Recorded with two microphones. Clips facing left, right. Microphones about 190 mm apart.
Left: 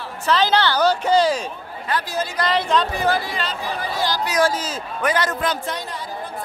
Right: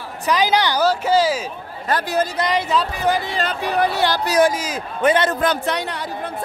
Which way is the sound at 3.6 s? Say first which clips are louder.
Right 7 dB; 70° right (ahead or behind).